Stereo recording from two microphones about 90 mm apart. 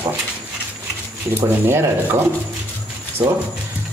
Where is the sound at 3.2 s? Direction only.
35° right (ahead or behind).